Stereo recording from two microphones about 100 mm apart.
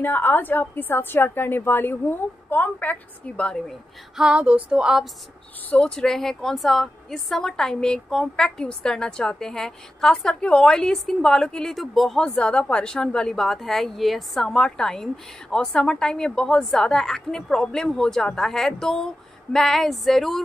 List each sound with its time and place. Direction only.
0.0 s a woman's voice: 20° left (ahead or behind)
4.2 s a sound: 10° right (ahead or behind)
5.7 s a woman's voice: 10° left (ahead or behind)